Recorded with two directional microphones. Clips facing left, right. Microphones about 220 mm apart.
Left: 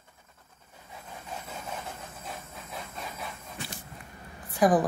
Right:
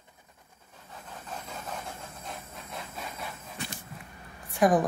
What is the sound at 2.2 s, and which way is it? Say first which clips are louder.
Hiss: even; centre (ahead or behind).